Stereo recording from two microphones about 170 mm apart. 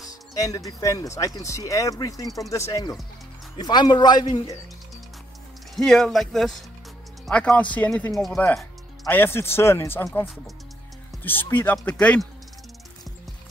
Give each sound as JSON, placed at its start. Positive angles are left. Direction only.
{"t": 0.4, "sound": "speech", "side_deg": 20}
{"t": 5.8, "sound": "speech", "side_deg": 0}
{"t": 9.0, "sound": "speech", "side_deg": 15}
{"t": 11.2, "sound": "speech", "side_deg": 10}